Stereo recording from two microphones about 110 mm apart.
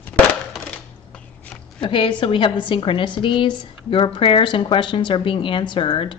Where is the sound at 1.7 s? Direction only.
50° left (ahead or behind).